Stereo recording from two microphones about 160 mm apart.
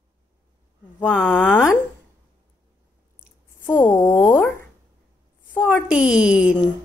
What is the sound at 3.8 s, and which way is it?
Speech, 25° left (ahead or behind).